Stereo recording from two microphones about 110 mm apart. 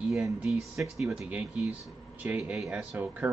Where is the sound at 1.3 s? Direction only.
15° right (ahead or behind).